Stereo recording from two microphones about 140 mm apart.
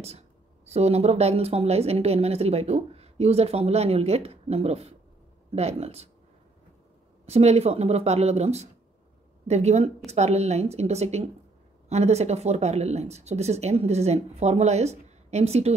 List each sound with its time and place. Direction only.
0.7 s speech: 50° right (ahead or behind)
7.2 s speech: 50° right (ahead or behind)